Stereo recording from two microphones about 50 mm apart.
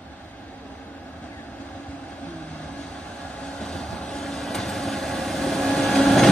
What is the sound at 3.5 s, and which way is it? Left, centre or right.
Vehicle, centre.